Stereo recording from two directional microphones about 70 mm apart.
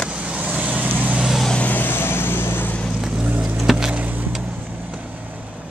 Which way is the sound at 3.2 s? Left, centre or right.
Centre.